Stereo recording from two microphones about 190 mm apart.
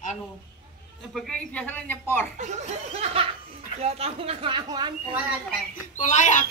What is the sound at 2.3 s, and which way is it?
Laughter, 40° right (ahead or behind).